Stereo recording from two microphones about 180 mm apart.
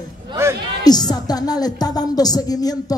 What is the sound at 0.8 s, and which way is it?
A woman's voice, 20° left (ahead or behind).